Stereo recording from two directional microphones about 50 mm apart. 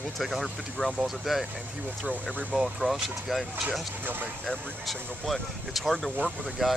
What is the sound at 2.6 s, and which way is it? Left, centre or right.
Speech, centre.